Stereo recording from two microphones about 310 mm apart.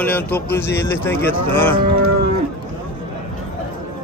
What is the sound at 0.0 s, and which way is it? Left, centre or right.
Speech, centre.